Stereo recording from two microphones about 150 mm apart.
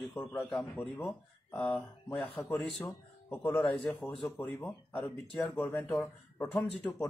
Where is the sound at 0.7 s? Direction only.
10° left (ahead or behind).